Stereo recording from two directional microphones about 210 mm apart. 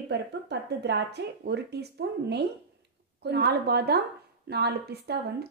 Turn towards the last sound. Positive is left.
turn(degrees=-50)  # may be behind; listen again after turning